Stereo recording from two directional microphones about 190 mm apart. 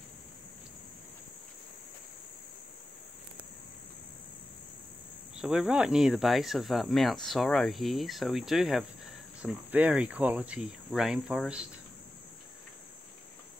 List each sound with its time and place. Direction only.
5.3 s speech: 5° right (ahead or behind)